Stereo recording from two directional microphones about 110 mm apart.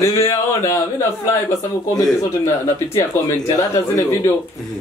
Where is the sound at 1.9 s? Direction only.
25° left (ahead or behind).